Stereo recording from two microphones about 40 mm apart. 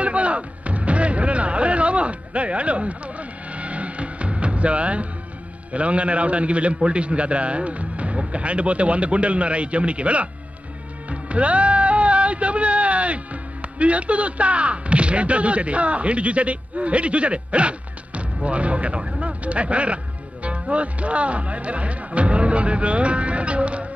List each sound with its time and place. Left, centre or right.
0.0 s music: right
5.7 s speech: right